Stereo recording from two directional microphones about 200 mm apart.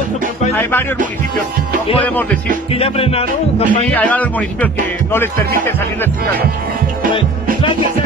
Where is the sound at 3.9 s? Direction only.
10° left (ahead or behind).